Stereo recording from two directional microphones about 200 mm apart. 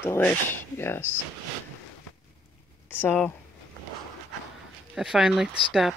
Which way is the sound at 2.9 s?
10° left (ahead or behind).